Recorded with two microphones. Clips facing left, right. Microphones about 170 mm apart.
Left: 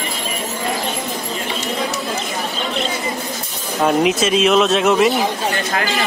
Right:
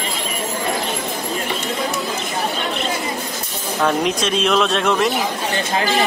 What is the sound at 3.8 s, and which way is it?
Speech, 5° left (ahead or behind).